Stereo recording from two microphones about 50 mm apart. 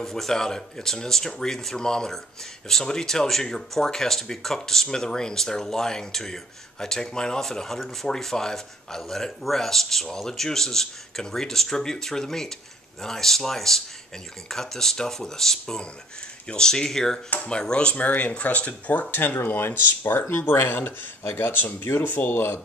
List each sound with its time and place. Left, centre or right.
0.0 s speech: centre
17.9 s speech: left